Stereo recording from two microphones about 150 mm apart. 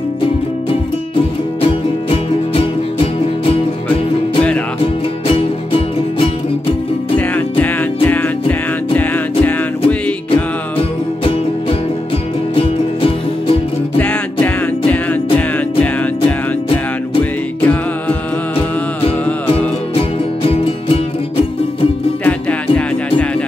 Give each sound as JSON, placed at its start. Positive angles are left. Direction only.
{"t": 1.1, "sound": "music", "side_deg": 40}
{"t": 5.3, "sound": "music", "side_deg": 35}
{"t": 7.2, "sound": "music", "side_deg": 10}
{"t": 12.5, "sound": "music", "side_deg": 35}
{"t": 13.9, "sound": "music", "side_deg": 10}
{"t": 17.2, "sound": "music", "side_deg": 10}
{"t": 19.9, "sound": "music", "side_deg": 40}
{"t": 22.2, "sound": "music", "side_deg": 10}